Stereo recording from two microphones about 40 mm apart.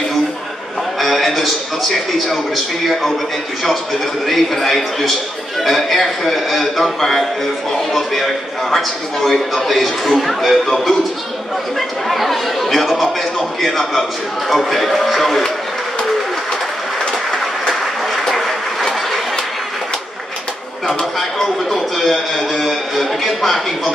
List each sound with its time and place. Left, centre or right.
0.9 s a man's voice: centre
4.3 s a man's voice: centre
12.1 s a man's voice: centre
17.1 s train: centre
21.2 s a man's voice: centre